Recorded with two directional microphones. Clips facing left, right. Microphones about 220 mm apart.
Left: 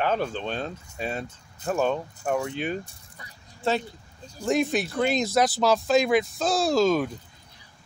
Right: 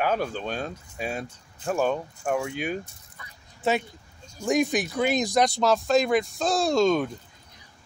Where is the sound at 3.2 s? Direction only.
35° left (ahead or behind).